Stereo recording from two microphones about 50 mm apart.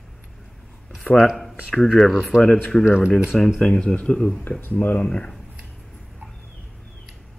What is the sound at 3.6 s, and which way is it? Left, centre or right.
Speech, centre.